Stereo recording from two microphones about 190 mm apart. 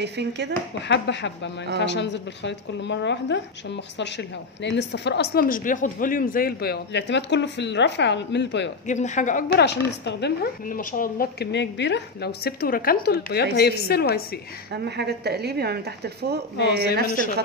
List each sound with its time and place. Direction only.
0.0 s speech: 65° right (ahead or behind)
0.8 s a woman's voice: 65° left (ahead or behind)
8.8 s speech: 40° left (ahead or behind)
9.5 s a woman's voice: 65° left (ahead or behind)
14.7 s speech: 60° right (ahead or behind)
16.5 s a woman's voice: 60° left (ahead or behind)